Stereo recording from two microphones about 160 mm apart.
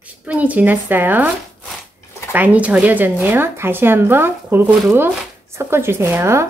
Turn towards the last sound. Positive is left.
turn(degrees=-15)  # may be behind; listen again after turning